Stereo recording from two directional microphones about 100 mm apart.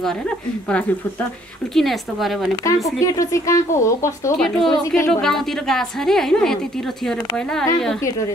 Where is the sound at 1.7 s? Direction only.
Centre (ahead or behind).